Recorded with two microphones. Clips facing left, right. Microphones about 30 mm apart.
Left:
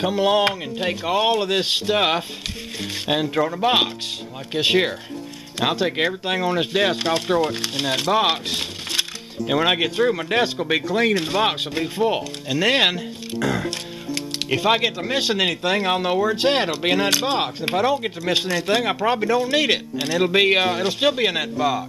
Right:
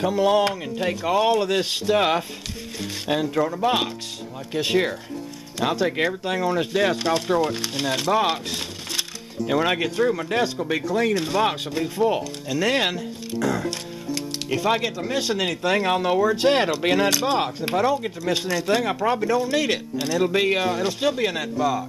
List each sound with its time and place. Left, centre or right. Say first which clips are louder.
0.0 s speech: left 1 dB; left
3.6 s speech: left 3 dB; left
14.5 s speech: left 3 dB; left